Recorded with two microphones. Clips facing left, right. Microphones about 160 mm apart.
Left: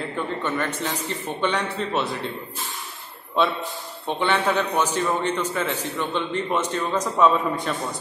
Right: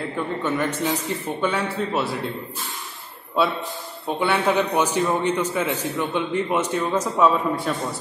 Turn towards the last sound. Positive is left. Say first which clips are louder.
# even
turn(degrees=-10)  # may be behind; listen again after turning